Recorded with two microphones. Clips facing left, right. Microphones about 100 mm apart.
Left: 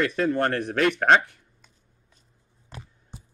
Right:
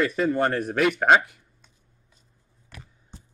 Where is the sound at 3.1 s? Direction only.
10° left (ahead or behind).